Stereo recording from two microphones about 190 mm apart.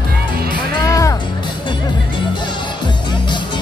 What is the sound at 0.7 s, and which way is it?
Music, 15° left (ahead or behind).